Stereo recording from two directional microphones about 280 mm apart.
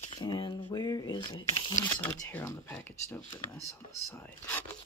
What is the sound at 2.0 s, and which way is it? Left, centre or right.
Speech, centre.